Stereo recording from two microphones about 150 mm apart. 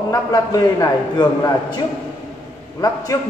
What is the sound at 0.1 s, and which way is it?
A man's voice, 25° left (ahead or behind).